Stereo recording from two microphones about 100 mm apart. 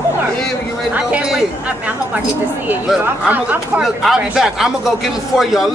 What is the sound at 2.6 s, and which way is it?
Speech, 20° right (ahead or behind).